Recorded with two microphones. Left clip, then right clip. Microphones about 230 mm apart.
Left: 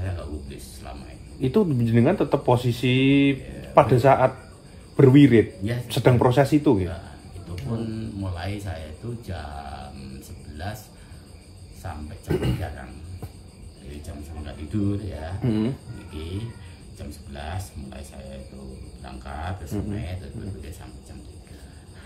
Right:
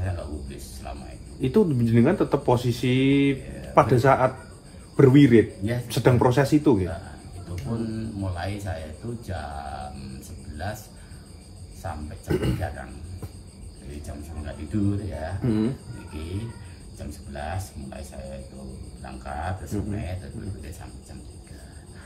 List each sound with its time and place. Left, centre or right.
0.0 s a sound: centre
1.4 s speech: left
7.9 s speech: centre
12.3 s speech: left
14.4 s speech: centre
15.4 s speech: left
17.0 s speech: centre
19.0 s speech: centre